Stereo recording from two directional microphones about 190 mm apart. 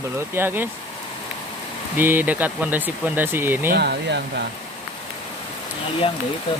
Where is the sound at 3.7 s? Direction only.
60° right (ahead or behind).